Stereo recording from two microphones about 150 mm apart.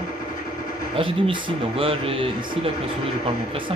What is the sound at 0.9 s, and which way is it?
A man's voice, 35° right (ahead or behind).